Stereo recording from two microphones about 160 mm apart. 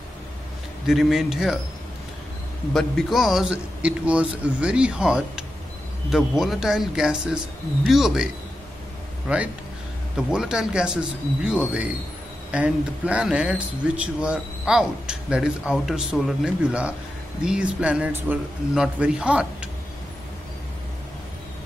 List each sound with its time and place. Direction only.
0.8 s speech: centre (ahead or behind)
2.7 s speech: centre (ahead or behind)
9.3 s a man's voice: 5° right (ahead or behind)